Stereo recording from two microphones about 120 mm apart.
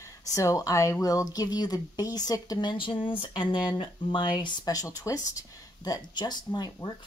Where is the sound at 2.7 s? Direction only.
45° left (ahead or behind).